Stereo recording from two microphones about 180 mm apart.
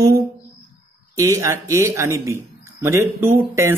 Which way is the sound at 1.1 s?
15° right (ahead or behind).